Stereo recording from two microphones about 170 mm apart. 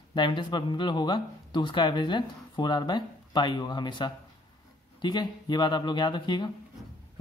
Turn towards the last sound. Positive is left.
turn(degrees=25)  # may be behind; listen again after turning